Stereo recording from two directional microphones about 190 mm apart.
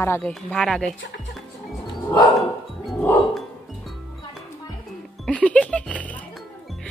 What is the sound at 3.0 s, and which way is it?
Wind chime, 5° left (ahead or behind).